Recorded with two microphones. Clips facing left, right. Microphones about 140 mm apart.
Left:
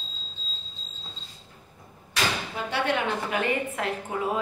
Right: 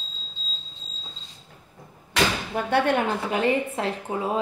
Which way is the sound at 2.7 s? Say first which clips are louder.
Right 5 dB; 50° right (ahead or behind).